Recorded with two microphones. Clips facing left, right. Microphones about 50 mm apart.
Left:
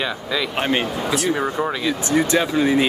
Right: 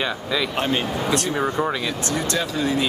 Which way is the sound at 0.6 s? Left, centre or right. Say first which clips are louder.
Left 4 dB; left.